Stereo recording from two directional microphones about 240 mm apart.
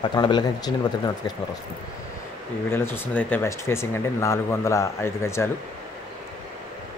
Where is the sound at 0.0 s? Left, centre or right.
Centre.